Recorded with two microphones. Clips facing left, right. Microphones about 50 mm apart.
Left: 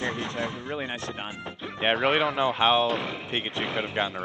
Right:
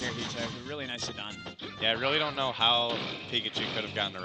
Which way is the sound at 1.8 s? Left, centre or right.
Left.